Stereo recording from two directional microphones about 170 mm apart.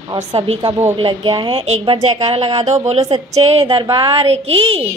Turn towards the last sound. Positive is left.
turn(degrees=-35)  # may be behind; listen again after turning